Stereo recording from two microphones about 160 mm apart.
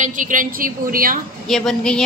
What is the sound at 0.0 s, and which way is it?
A woman's voice, 55° right (ahead or behind).